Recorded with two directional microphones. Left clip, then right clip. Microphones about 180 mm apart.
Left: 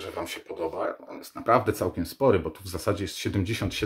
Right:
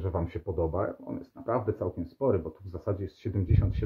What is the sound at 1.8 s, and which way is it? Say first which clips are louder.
Speech: left 5 dB; 25° left (ahead or behind).